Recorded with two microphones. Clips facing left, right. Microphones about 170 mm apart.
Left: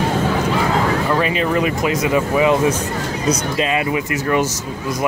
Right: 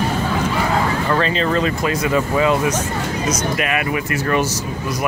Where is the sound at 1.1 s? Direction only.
10° left (ahead or behind).